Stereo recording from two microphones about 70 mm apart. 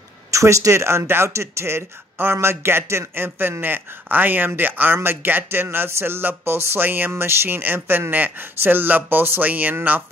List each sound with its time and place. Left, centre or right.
0.3 s speech: right